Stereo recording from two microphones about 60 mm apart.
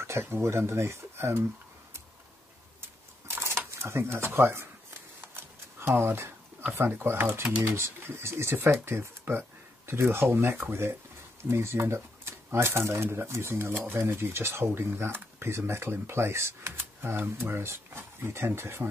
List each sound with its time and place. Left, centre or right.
0.0 s speech: right
2.8 s a sound: right
7.7 s speech: right